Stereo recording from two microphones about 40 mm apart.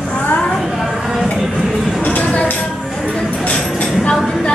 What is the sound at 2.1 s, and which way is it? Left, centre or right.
Speech, left.